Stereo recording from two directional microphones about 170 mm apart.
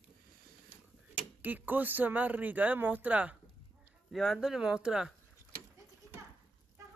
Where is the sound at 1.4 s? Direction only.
10° right (ahead or behind).